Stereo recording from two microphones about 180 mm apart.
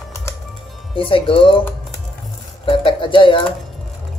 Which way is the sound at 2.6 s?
30° left (ahead or behind).